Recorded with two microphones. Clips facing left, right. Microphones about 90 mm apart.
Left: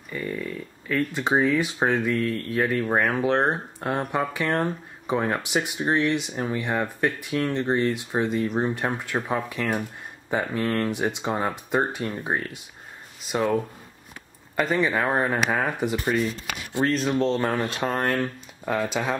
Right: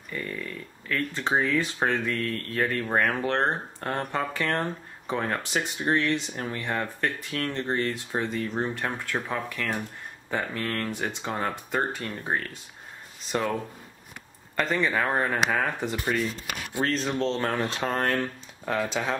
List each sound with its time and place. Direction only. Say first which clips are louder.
0.1 s speech: left 4 dB; 10° left (ahead or behind)
14.6 s speech: left 3 dB; 5° left (ahead or behind)